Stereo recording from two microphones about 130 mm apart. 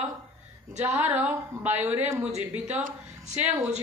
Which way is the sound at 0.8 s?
20° right (ahead or behind).